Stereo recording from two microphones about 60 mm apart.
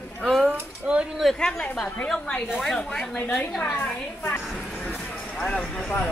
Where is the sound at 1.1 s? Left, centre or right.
Centre.